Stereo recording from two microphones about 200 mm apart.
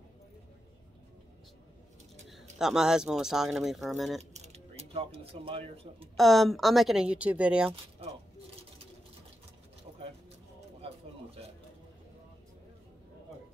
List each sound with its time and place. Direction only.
2.2 s speech: centre (ahead or behind)
4.2 s speech: 35° right (ahead or behind)
6.1 s speech: centre (ahead or behind)
9.9 s vehicle: 35° right (ahead or behind)